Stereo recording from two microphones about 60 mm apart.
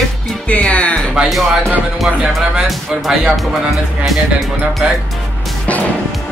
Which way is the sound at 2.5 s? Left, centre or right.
Centre.